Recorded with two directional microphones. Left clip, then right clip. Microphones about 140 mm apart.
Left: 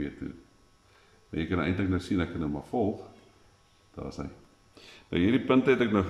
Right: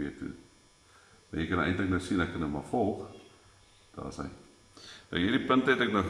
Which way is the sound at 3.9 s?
5° left (ahead or behind).